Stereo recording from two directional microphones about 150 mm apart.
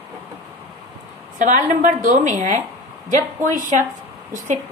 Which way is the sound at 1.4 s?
55° right (ahead or behind).